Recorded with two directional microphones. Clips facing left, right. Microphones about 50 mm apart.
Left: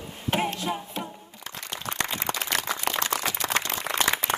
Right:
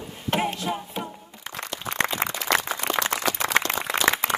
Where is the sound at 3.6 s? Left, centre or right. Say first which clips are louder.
Right 7 dB; right.